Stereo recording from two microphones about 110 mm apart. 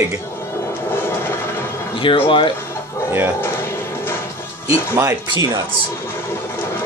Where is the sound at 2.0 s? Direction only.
55° left (ahead or behind).